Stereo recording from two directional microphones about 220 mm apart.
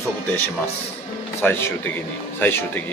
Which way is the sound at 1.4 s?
10° left (ahead or behind).